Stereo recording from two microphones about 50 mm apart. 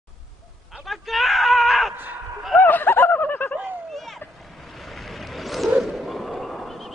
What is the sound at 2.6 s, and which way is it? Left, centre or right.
Snicker, left.